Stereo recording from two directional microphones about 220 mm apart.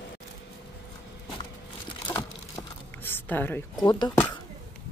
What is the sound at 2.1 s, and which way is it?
Crumpling, 15° left (ahead or behind).